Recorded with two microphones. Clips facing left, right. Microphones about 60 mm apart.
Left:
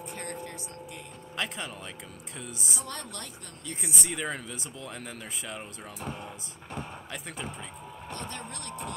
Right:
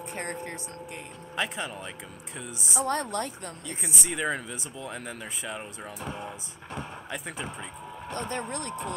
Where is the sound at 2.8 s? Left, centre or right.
Right.